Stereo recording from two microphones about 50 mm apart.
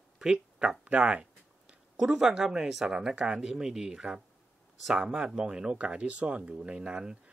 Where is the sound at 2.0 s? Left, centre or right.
Centre.